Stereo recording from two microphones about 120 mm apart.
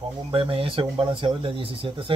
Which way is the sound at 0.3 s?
50° right (ahead or behind).